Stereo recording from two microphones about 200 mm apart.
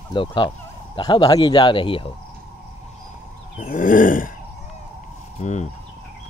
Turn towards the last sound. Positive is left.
turn(degrees=35)  # may be behind; listen again after turning